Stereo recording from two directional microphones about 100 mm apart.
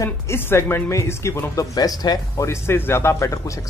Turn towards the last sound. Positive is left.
turn(degrees=30)  # may be behind; listen again after turning